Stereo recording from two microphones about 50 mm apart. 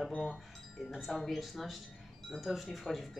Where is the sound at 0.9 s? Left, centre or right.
Centre.